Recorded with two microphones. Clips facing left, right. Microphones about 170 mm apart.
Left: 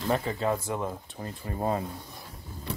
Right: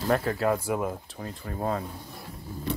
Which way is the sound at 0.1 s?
Centre (ahead or behind).